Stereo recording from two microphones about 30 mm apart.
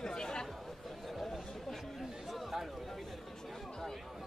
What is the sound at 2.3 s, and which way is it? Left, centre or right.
Chatter, centre.